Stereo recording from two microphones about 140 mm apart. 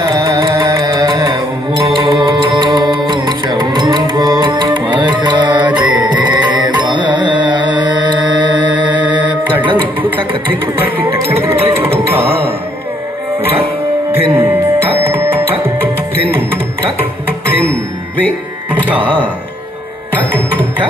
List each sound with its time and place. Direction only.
0.0 s carnatic music: 30° right (ahead or behind)
1.9 s music: 35° right (ahead or behind)
5.6 s music: 10° right (ahead or behind)
5.9 s carnatic music: 35° right (ahead or behind)
10.8 s music: 15° right (ahead or behind)
14.1 s music: 15° right (ahead or behind)
20.2 s music: 15° right (ahead or behind)